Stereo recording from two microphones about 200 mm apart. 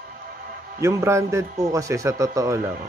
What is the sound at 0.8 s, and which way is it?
Speech, 15° right (ahead or behind).